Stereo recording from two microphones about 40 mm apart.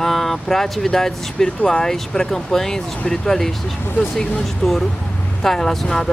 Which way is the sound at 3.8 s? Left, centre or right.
Left.